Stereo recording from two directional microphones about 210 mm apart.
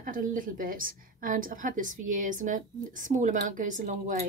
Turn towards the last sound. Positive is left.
turn(degrees=-35)  # may be behind; listen again after turning